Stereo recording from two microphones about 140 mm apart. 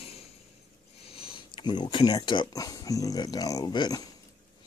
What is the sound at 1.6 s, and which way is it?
Speech, 35° left (ahead or behind).